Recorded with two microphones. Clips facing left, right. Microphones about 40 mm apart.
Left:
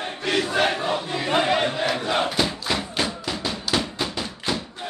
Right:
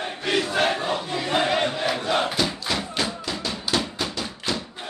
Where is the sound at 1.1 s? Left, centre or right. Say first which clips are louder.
Left 2 dB; centre.